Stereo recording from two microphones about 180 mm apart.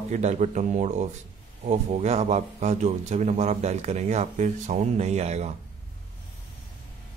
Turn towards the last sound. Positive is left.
turn(degrees=-35)  # may be behind; listen again after turning